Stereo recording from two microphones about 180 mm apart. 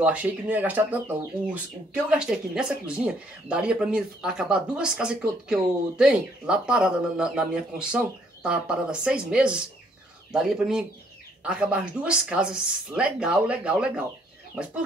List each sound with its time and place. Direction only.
0.0 s speech: 10° right (ahead or behind)